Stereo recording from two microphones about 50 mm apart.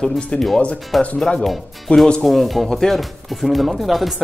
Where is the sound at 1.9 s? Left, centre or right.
Left.